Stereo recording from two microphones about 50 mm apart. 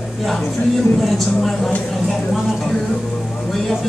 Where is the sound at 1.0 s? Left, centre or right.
Centre.